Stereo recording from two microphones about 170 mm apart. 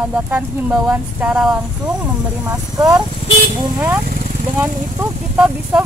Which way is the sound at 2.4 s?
20° right (ahead or behind).